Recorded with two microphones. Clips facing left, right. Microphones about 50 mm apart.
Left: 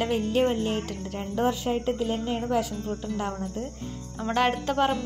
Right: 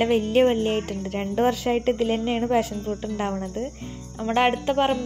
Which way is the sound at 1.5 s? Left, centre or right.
Right.